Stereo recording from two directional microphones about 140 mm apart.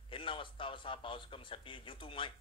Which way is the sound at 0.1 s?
35° left (ahead or behind).